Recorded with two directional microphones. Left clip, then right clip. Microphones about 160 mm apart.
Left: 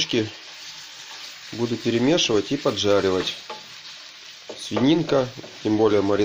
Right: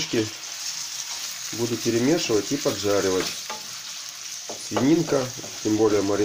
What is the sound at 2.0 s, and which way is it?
Speech, 40° left (ahead or behind).